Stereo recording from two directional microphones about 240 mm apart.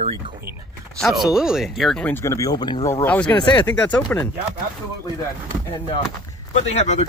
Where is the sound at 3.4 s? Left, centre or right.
Centre.